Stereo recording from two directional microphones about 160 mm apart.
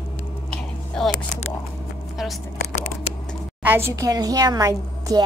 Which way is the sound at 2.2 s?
Centre (ahead or behind).